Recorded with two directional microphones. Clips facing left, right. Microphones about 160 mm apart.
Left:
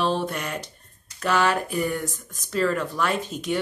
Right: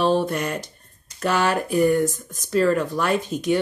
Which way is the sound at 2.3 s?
Centre (ahead or behind).